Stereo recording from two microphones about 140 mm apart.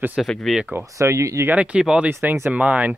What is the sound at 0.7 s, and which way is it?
Speech, 20° right (ahead or behind).